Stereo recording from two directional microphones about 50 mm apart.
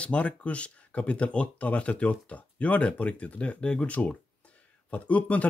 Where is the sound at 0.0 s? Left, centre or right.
Left.